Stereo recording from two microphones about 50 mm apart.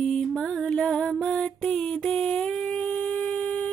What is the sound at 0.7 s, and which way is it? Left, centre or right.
Music, centre.